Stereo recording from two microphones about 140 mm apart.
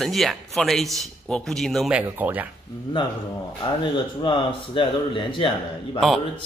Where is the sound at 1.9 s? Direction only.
10° right (ahead or behind).